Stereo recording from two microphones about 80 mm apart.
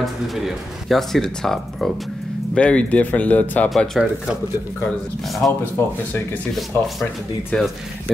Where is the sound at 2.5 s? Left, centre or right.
Centre.